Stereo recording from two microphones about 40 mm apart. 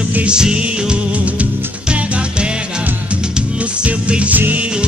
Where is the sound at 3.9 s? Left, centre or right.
Right.